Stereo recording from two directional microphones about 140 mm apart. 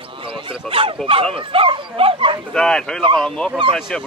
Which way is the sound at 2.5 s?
5° left (ahead or behind).